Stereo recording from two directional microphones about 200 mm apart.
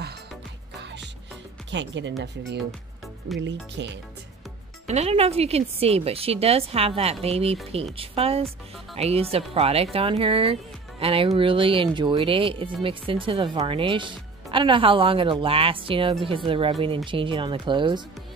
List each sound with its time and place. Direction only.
1.7 s speech: 65° right (ahead or behind)
3.3 s speech: 60° right (ahead or behind)
4.8 s speech: 35° right (ahead or behind)